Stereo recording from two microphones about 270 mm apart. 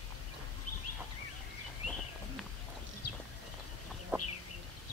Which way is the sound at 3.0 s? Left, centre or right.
Left.